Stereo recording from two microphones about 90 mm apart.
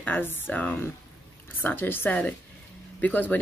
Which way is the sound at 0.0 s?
20° left (ahead or behind).